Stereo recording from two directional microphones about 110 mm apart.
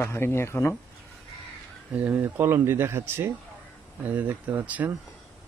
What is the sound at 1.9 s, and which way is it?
Speech, 20° right (ahead or behind).